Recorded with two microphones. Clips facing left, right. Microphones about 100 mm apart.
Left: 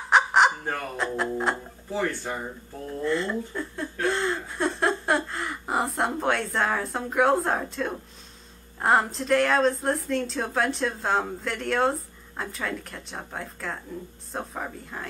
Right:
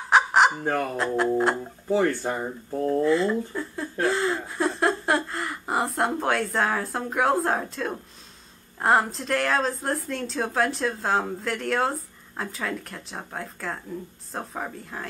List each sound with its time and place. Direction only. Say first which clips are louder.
0.1 s fowl: right 1 dB; centre (ahead or behind)
0.9 s speech: right 4 dB; centre (ahead or behind)
1.9 s speech: right 6 dB; 40° right (ahead or behind)
3.0 s speech: right 3 dB; centre (ahead or behind)
4.0 s gasp: right 2 dB; centre (ahead or behind)
8.7 s speech: right 1 dB; centre (ahead or behind)